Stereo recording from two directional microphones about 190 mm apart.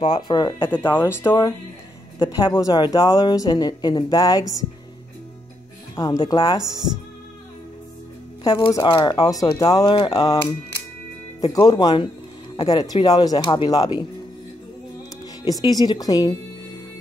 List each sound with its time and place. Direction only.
0.1 s speech: 20° left (ahead or behind)
0.7 s speech: 10° left (ahead or behind)
2.1 s speech: 25° left (ahead or behind)
5.9 s speech: 20° left (ahead or behind)
6.6 s speech: 20° right (ahead or behind)
8.8 s speech: 20° left (ahead or behind)
15.6 s speech: 20° left (ahead or behind)